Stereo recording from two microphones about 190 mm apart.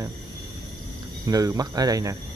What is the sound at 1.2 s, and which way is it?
Speech, 20° right (ahead or behind).